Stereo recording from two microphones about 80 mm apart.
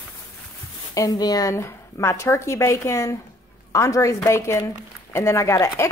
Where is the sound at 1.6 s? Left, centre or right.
Left.